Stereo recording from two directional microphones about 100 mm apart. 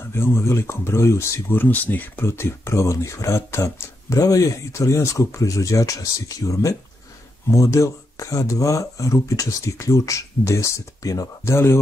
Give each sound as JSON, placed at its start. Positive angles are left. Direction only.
{"t": 0.0, "sound": "speech", "side_deg": 25}